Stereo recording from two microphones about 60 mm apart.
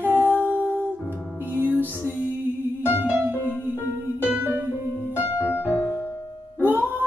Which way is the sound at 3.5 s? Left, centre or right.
Left.